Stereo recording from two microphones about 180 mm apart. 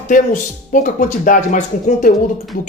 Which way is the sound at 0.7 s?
50° left (ahead or behind).